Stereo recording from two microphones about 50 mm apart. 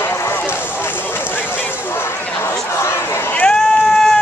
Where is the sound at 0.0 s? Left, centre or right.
Left.